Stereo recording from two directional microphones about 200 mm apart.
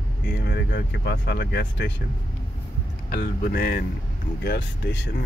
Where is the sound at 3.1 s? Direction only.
50° left (ahead or behind).